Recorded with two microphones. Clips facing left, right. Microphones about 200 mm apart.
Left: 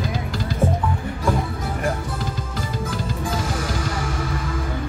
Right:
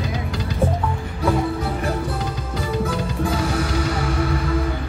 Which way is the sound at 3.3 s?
65° right (ahead or behind).